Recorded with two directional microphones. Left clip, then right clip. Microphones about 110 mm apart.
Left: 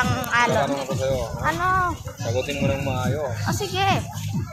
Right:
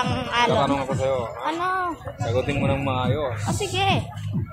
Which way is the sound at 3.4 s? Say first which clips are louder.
Left 2 dB; 10° right (ahead or behind).